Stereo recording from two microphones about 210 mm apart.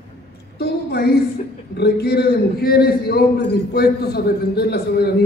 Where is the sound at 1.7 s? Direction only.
50° left (ahead or behind).